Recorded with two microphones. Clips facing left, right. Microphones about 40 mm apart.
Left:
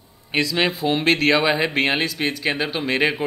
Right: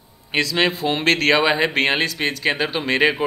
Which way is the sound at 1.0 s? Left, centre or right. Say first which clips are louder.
Right 1 dB; right.